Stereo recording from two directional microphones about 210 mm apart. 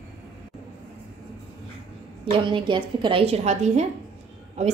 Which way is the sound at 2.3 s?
25° right (ahead or behind).